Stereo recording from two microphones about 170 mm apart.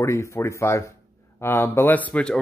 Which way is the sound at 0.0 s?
15° left (ahead or behind).